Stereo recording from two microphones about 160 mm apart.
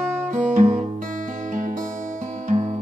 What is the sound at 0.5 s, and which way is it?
Music, 45° right (ahead or behind).